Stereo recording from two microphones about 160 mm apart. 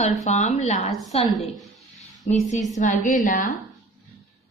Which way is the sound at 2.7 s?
50° left (ahead or behind).